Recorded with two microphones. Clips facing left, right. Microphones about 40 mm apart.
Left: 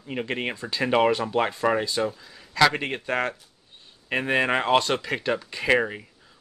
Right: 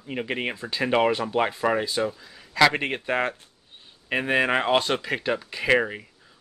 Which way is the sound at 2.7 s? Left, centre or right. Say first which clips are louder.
Right 1 dB; centre.